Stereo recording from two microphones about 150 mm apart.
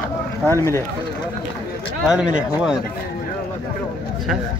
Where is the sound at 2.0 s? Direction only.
5° right (ahead or behind).